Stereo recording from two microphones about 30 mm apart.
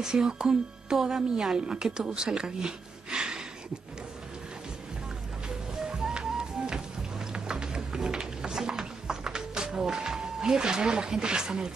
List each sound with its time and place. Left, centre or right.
0.0 s speech: right
5.9 s music: right
7.3 s a sound: right
8.6 s music: centre